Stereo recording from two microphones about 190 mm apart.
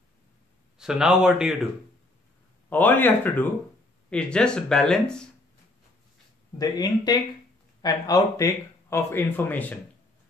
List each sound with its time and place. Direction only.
0.7 s speech: 5° right (ahead or behind)
2.7 s a man's voice: 10° left (ahead or behind)
6.6 s a man's voice: 20° left (ahead or behind)